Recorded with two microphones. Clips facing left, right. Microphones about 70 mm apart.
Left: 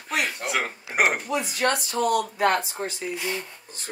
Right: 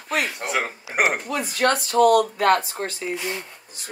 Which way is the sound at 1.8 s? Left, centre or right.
Right.